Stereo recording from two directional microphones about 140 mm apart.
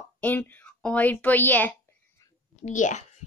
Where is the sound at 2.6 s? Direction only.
60° left (ahead or behind).